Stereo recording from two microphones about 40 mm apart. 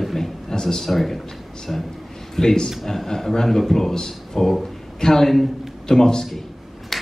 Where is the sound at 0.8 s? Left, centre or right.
Centre.